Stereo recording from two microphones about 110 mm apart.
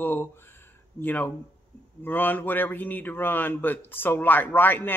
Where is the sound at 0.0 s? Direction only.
20° left (ahead or behind).